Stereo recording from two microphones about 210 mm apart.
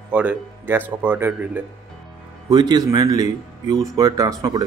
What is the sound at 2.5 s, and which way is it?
Speech, 20° right (ahead or behind).